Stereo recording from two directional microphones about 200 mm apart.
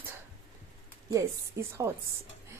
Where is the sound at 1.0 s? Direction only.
15° right (ahead or behind).